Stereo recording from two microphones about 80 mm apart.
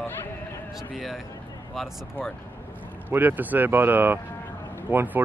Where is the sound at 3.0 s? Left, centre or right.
Right.